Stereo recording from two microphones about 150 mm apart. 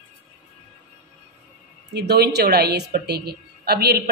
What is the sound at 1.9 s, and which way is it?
A woman's voice, 90° right.